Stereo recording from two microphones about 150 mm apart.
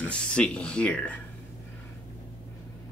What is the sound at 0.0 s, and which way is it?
Speech, 10° left (ahead or behind).